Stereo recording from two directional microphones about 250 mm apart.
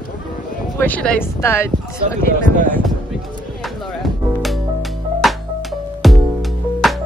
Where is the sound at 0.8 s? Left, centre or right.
Centre.